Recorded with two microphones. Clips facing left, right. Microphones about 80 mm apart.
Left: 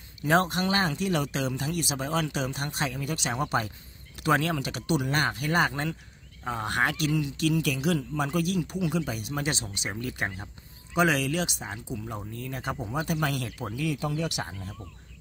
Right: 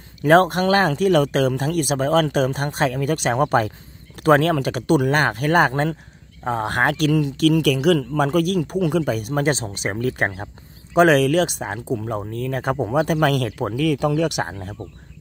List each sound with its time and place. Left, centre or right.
0.2 s speech: right